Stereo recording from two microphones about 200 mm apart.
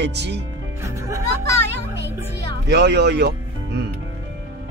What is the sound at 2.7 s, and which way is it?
Speech, 55° right (ahead or behind).